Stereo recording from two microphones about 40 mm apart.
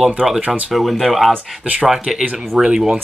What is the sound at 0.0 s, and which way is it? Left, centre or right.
Speech, centre.